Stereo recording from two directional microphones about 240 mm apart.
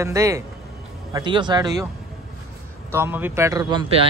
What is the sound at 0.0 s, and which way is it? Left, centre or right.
Speech, centre.